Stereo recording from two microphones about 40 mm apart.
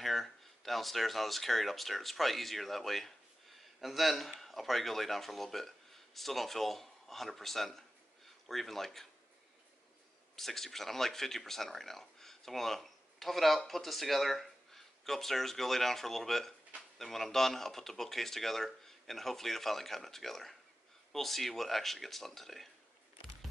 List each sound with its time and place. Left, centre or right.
0.0 s speech: centre
10.3 s speech: centre